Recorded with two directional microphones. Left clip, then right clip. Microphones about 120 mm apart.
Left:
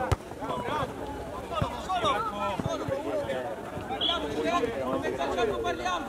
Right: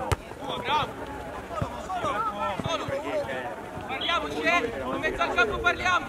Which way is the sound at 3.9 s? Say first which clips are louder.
Right 2 dB; 35° right (ahead or behind).